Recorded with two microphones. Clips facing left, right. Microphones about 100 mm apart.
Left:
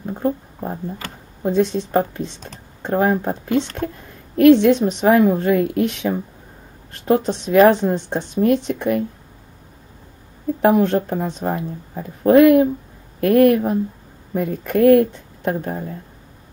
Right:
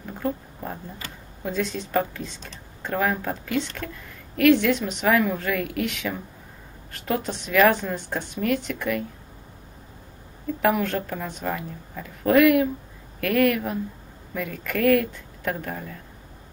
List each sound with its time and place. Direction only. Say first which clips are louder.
0.0 s a sound: left 7 dB; 30° left (ahead or behind)
1.5 s a woman's voice: left 8 dB; 25° left (ahead or behind)
7.4 s speech: left 6 dB; 30° left (ahead or behind)
10.6 s a woman's voice: left 7 dB; 30° left (ahead or behind)